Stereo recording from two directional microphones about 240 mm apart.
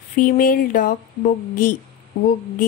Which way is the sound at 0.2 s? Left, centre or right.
Left.